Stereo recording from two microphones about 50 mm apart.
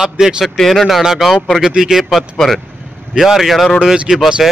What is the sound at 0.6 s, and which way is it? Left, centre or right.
Speech, centre.